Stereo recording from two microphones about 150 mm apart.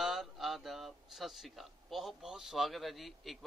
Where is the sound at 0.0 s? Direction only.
Centre (ahead or behind).